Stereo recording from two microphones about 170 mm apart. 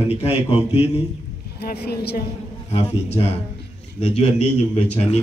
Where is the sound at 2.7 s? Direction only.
35° left (ahead or behind).